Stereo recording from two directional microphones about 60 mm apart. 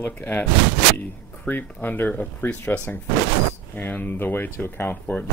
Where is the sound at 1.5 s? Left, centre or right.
Left.